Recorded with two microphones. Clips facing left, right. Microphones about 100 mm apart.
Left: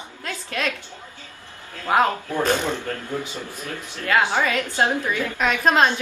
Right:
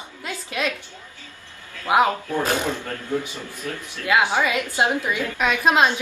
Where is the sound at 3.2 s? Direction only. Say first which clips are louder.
Right 1 dB; 20° left (ahead or behind).